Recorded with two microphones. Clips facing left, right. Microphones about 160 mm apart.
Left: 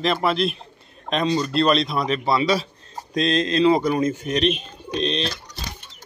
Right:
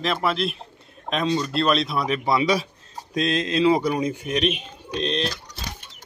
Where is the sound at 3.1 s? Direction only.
5° right (ahead or behind).